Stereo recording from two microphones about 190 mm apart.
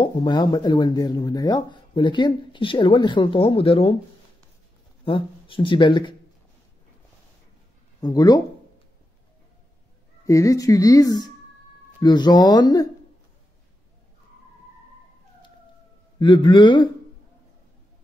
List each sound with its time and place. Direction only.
0.0 s speech: 25° left (ahead or behind)
5.0 s speech: 25° left (ahead or behind)
8.0 s speech: 20° left (ahead or behind)
10.2 s speech: 15° left (ahead or behind)
16.2 s speech: 25° left (ahead or behind)